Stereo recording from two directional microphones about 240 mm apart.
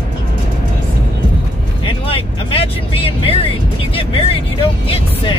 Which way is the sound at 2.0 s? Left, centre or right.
Left.